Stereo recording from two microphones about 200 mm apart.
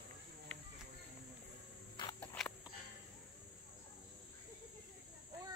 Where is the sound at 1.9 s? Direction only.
20° left (ahead or behind).